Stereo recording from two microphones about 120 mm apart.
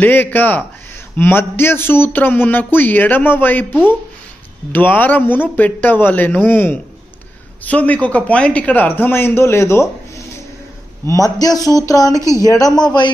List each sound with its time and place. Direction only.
0.0 s a man's voice: 15° left (ahead or behind)
4.7 s a man's voice: 15° left (ahead or behind); by 13.1 s 35° left (ahead or behind)